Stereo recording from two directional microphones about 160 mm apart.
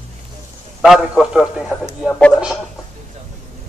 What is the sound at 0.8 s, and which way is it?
A man's voice, 5° right (ahead or behind).